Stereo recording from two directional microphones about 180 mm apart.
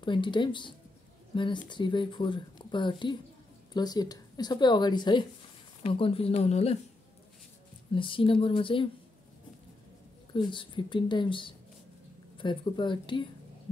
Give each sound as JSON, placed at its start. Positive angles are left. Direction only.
{"t": 0.0, "sound": "speech", "side_deg": 25}
{"t": 7.9, "sound": "speech", "side_deg": 30}
{"t": 10.3, "sound": "speech", "side_deg": 25}